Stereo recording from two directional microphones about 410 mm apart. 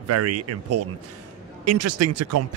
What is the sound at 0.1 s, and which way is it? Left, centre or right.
Speech, right.